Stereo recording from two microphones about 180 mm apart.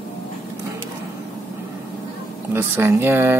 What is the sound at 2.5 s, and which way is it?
Speech, 15° right (ahead or behind).